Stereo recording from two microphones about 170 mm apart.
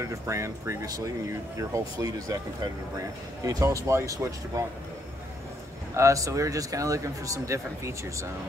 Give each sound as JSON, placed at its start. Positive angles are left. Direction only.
{"t": 0.0, "sound": "speech", "side_deg": -15}
{"t": 5.9, "sound": "speech", "side_deg": -20}